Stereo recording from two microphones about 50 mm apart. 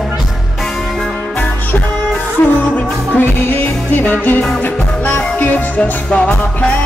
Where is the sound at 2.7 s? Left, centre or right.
Left.